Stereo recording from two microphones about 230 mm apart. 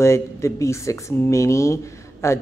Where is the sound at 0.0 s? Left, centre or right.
Centre.